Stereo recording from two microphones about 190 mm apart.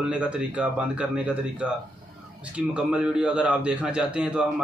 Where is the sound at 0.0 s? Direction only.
5° right (ahead or behind).